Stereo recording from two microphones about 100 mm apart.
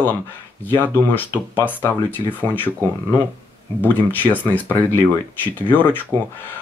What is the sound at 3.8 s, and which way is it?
Speech, 20° left (ahead or behind).